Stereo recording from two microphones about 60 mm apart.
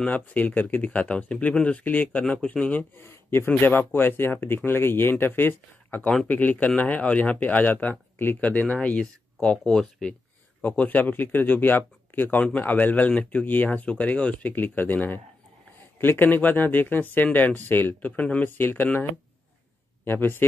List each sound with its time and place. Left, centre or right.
0.0 s speech: left
2.2 s speech: centre
3.0 s speech: left
9.7 s speech: centre
10.6 s speech: left
18.5 s speech: left
20.1 s speech: left